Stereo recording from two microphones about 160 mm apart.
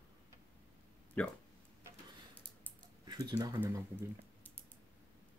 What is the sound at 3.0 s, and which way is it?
Speech, 25° right (ahead or behind).